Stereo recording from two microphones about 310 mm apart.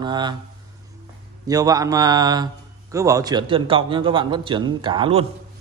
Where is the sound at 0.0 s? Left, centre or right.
Centre.